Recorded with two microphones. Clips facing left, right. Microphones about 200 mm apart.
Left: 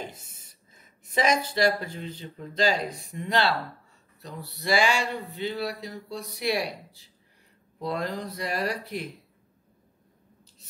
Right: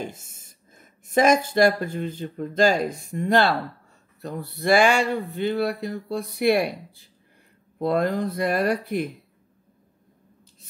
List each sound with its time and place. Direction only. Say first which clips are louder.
0.0 s speech: right 5 dB; 50° right (ahead or behind)